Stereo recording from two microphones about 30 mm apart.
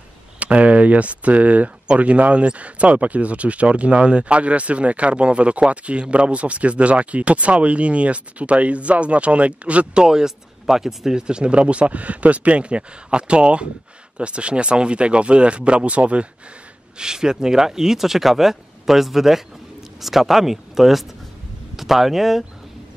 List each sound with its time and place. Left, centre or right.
0.4 s speech: right
9.9 s speech: right
11.1 s speech: right
17.0 s speech: right